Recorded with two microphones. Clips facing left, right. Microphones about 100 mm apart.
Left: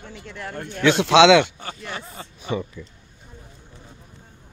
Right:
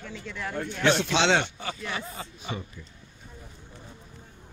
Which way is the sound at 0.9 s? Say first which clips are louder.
Left 10 dB; 90° left.